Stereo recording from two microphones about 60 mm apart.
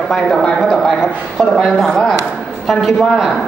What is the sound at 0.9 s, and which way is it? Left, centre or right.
A man's voice, centre.